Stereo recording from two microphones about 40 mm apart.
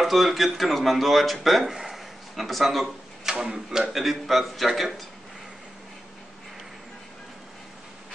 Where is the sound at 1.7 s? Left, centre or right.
Centre.